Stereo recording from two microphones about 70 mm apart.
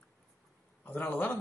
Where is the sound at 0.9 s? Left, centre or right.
Left.